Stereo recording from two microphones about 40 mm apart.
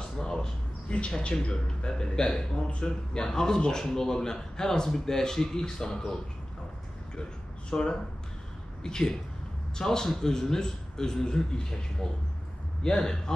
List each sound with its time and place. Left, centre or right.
0.2 s a sound: centre
0.8 s a man's voice: left
7.7 s a man's voice: centre